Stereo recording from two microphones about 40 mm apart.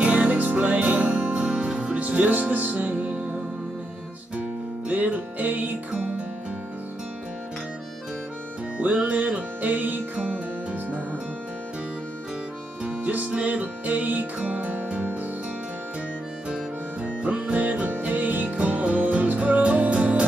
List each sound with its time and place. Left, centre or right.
0.0 s music: right
2.0 s music: right
4.9 s music: right
5.9 s music: right
9.0 s music: right
13.2 s music: right
16.4 s music: right